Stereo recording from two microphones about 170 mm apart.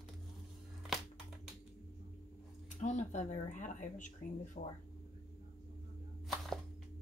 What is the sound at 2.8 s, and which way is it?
Speech, 45° left (ahead or behind).